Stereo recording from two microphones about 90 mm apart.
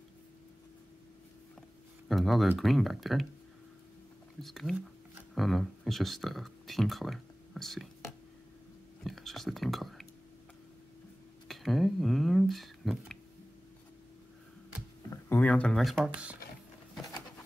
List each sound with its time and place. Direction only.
2.0 s speech: centre (ahead or behind)
4.4 s speech: 5° left (ahead or behind)
9.0 s whispering: centre (ahead or behind)
11.4 s speech: centre (ahead or behind)
15.3 s speech: 15° left (ahead or behind)
15.7 s speech: centre (ahead or behind)